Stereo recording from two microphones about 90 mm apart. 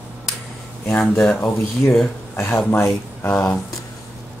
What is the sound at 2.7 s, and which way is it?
Speech, 25° left (ahead or behind).